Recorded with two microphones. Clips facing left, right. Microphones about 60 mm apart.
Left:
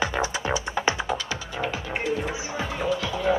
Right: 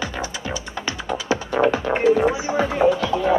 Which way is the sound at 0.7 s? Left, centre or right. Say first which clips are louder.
Left 4 dB; centre.